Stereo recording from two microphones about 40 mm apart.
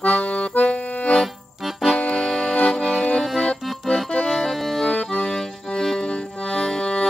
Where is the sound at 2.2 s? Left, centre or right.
Centre.